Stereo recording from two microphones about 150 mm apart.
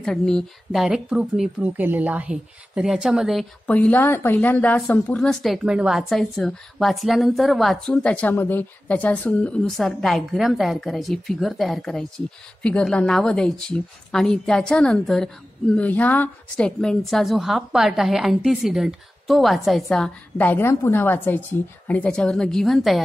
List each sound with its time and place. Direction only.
0.0 s speech: 5° left (ahead or behind)
3.6 s speech: 10° left (ahead or behind)